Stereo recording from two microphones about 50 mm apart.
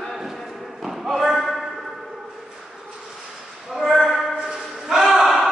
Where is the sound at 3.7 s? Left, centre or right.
Centre.